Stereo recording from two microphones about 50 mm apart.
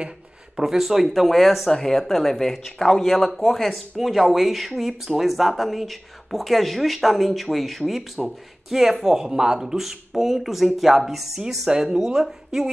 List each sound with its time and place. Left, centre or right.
0.6 s speech: centre